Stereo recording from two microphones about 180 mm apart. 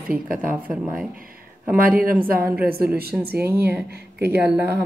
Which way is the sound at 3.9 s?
65° right (ahead or behind).